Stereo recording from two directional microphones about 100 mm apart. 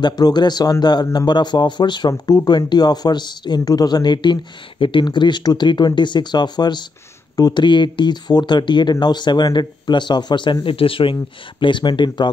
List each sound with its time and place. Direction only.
0.0 s speech: 45° left (ahead or behind); by 11.1 s 65° left (ahead or behind)
11.6 s speech: 50° left (ahead or behind)